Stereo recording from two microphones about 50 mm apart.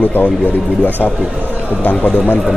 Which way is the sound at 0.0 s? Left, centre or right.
Left.